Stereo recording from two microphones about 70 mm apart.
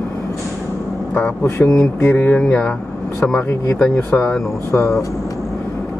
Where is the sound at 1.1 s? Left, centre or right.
Left.